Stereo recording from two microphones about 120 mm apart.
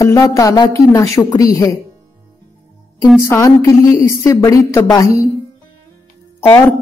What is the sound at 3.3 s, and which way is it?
A woman's voice, 25° left (ahead or behind).